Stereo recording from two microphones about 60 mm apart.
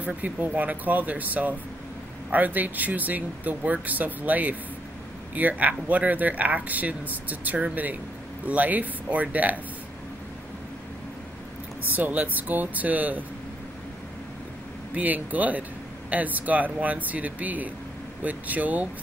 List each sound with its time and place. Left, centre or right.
0.0 s speech: right
11.9 s speech: right
15.0 s speech: right